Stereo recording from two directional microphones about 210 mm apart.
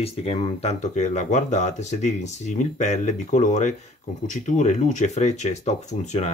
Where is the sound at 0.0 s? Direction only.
30° left (ahead or behind).